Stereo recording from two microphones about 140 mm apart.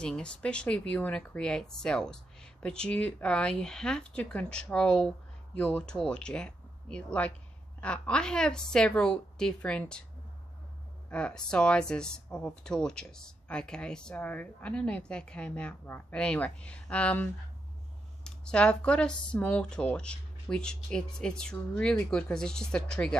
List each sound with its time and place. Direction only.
0.0 s speech: 5° left (ahead or behind)
11.1 s speech: 5° left (ahead or behind)